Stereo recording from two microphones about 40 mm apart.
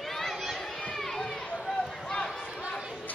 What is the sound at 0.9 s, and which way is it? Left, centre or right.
Crowd, centre.